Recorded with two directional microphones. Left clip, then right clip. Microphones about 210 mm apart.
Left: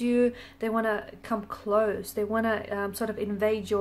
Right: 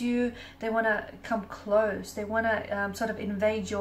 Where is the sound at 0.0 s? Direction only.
45° left (ahead or behind).